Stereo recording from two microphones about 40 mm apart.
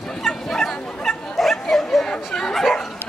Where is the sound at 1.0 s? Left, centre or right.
Centre.